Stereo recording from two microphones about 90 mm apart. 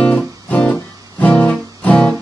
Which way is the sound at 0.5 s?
15° left (ahead or behind).